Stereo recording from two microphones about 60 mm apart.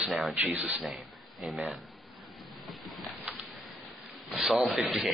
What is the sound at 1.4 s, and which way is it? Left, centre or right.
Speech, centre.